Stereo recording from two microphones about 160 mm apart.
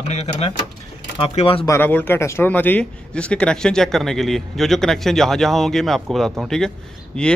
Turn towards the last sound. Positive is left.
turn(degrees=5)  # may be behind; listen again after turning